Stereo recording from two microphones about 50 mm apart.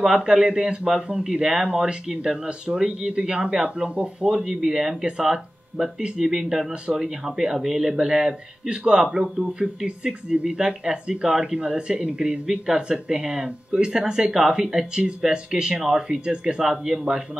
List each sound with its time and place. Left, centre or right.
0.0 s speech: centre
4.3 s speech: centre